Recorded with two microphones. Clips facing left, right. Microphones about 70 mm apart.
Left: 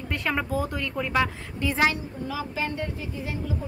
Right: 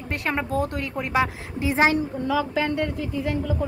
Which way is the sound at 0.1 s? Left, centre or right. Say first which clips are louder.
Right 2 dB; centre.